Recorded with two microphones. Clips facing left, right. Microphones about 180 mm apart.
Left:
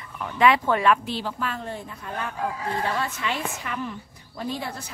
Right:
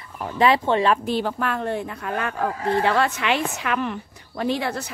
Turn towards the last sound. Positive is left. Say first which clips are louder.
# right 7 dB
turn(degrees=-75)  # may be behind; listen again after turning